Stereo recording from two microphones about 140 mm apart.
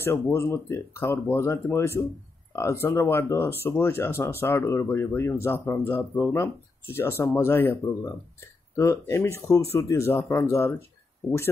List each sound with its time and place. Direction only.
0.0 s speech: 20° left (ahead or behind)